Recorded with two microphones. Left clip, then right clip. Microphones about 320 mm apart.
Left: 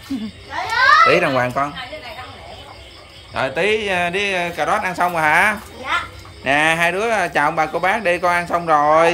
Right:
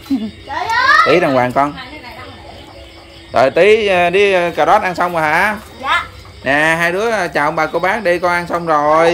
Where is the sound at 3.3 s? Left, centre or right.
Centre.